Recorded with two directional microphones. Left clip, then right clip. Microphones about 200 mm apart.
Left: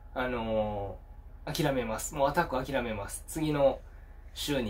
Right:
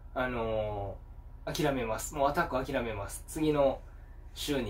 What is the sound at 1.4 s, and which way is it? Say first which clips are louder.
Speech: left 1 dB; 15° left (ahead or behind).